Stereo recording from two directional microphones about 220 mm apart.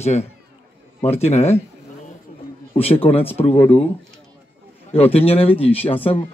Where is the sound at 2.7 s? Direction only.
25° left (ahead or behind).